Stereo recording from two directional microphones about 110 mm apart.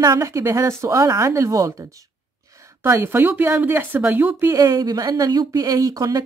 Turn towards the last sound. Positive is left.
turn(degrees=-35)  # may be behind; listen again after turning